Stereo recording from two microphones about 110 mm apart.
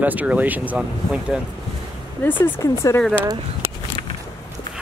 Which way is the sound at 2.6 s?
30° left (ahead or behind).